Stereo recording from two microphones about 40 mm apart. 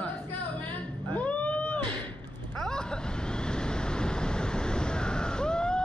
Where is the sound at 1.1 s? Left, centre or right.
Left.